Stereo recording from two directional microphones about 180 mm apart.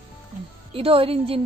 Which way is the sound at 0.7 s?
30° right (ahead or behind).